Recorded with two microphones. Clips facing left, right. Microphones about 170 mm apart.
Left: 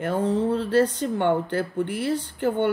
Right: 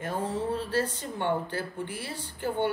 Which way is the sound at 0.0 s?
65° left (ahead or behind).